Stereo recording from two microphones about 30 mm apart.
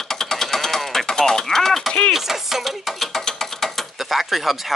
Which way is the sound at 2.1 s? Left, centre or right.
Centre.